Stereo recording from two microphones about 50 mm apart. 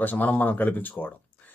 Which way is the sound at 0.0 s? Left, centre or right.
Left.